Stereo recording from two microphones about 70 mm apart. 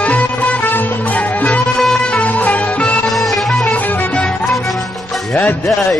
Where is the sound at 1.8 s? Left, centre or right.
Centre.